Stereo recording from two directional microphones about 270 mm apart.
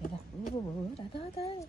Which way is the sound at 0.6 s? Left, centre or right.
Left.